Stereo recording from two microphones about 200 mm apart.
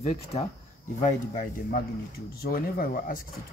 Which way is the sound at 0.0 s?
35° left (ahead or behind).